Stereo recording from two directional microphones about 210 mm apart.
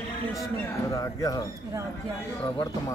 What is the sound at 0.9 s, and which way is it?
Speech, 15° left (ahead or behind).